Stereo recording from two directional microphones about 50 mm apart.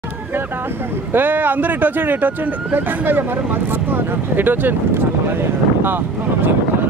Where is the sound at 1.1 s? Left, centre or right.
Right.